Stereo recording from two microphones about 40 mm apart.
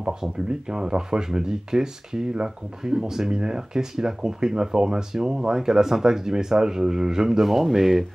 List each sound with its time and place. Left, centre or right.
0.0 s speech: centre